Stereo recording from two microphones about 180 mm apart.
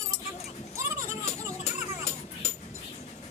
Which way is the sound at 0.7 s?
15° right (ahead or behind).